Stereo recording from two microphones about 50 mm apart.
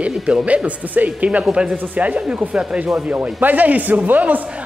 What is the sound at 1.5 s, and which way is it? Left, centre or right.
Speech, centre.